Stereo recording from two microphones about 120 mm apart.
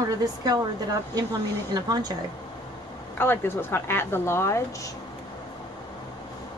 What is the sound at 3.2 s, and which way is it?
A woman's voice, 20° left (ahead or behind).